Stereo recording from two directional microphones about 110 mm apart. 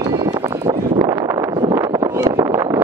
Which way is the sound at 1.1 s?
30° right (ahead or behind).